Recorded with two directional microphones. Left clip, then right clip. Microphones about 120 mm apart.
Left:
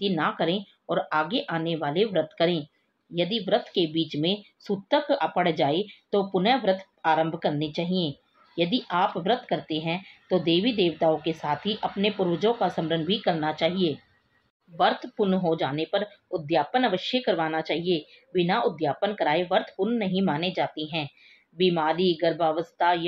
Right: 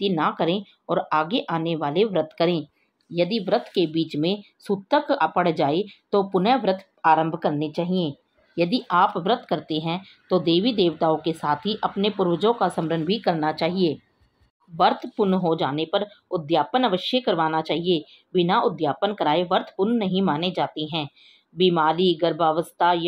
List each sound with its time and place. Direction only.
0.0 s speech: 35° right (ahead or behind)